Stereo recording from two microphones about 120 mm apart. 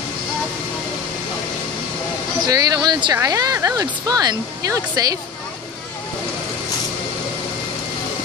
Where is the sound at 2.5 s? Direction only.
30° right (ahead or behind).